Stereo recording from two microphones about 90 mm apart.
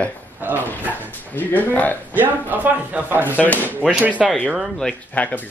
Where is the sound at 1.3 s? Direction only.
20° left (ahead or behind).